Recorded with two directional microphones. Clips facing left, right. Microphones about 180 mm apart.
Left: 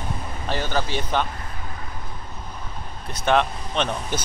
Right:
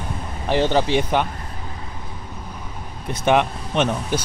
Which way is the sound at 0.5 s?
20° right (ahead or behind).